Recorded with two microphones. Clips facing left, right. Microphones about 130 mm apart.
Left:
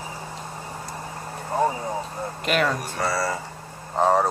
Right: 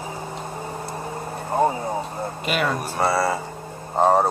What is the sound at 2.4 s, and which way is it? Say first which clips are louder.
Speech: left 1 dB; 5° right (ahead or behind).